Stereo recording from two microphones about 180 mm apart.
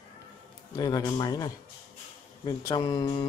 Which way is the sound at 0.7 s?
20° left (ahead or behind).